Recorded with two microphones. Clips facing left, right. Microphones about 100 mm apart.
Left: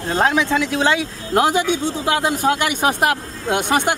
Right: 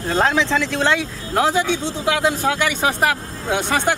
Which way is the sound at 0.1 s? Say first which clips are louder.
Left 1 dB; 15° left (ahead or behind).